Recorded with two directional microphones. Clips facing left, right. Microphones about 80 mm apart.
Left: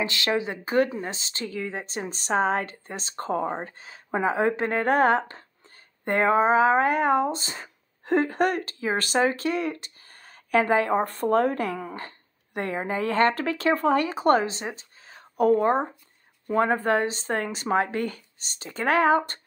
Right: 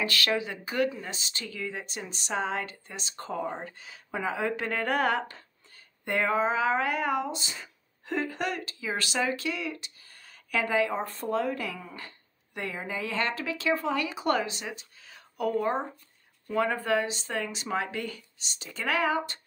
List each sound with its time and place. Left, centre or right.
0.0 s speech: left